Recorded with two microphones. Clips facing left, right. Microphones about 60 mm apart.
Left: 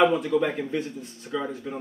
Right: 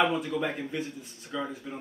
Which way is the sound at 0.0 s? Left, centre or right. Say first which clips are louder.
Left 6 dB; centre.